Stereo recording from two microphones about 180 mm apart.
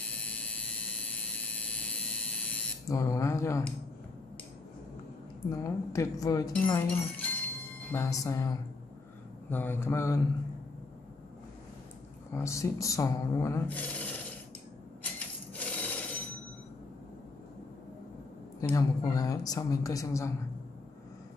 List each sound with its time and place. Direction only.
0.0 s a sound: 5° left (ahead or behind)
2.9 s speech: 20° left (ahead or behind)
5.5 s a woman's voice: 20° left (ahead or behind)
12.3 s speech: 15° left (ahead or behind)
15.1 s wood: 10° left (ahead or behind)
18.6 s a woman's voice: 20° left (ahead or behind)